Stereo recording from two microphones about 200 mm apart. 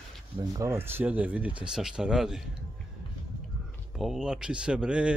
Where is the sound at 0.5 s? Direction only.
10° right (ahead or behind).